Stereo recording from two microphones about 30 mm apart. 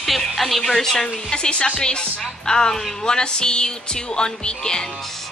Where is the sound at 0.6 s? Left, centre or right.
Centre.